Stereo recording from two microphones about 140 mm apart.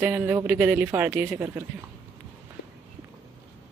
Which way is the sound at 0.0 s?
15° right (ahead or behind).